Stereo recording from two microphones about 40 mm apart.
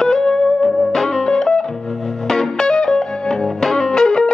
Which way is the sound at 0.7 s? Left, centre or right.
Centre.